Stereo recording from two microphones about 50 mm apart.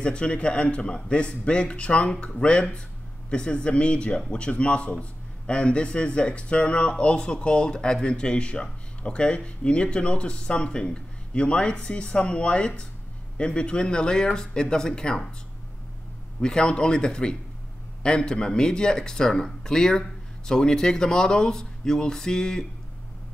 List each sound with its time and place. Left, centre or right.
0.0 s speech: left
16.3 s speech: centre